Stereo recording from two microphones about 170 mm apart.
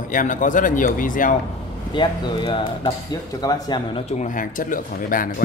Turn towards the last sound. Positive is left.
turn(degrees=55)  # may be behind; listen again after turning